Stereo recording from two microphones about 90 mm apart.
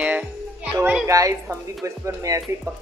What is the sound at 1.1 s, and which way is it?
Speech, 35° right (ahead or behind).